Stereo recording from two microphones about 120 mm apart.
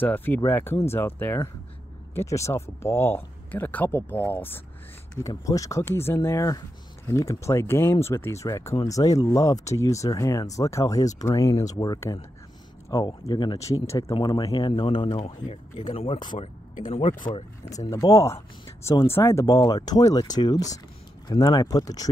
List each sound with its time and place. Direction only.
0.0 s speech: 15° left (ahead or behind)
5.2 s speech: 30° left (ahead or behind)
13.6 s speech: 25° left (ahead or behind)
14.1 s speech: 40° left (ahead or behind)
15.5 s speech: 60° left (ahead or behind)
16.3 s speech: 75° left (ahead or behind)
17.8 s speech: 25° left (ahead or behind)
19.4 s speech: 30° left (ahead or behind)